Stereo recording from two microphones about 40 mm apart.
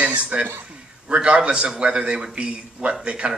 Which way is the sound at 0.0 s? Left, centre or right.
Right.